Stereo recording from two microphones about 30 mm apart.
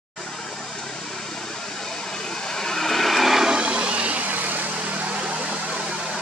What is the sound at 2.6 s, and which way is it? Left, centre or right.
Vehicle, centre.